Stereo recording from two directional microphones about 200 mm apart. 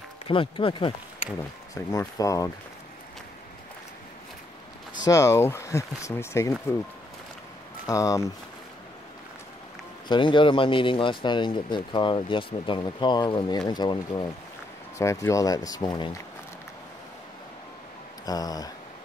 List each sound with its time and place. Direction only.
0.3 s speech: 25° left (ahead or behind)
5.0 s speech: 15° left (ahead or behind)
7.8 s speech: 15° left (ahead or behind)
10.0 s speech: 25° left (ahead or behind)
18.2 s speech: 20° left (ahead or behind)